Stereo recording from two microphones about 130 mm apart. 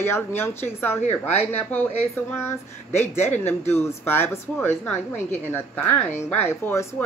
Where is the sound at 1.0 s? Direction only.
55° left (ahead or behind).